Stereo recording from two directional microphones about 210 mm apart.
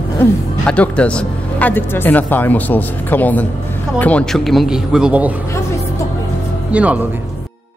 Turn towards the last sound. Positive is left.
turn(degrees=-5)  # may be behind; listen again after turning